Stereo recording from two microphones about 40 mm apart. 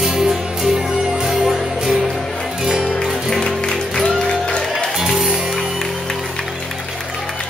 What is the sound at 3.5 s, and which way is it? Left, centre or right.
Music, left.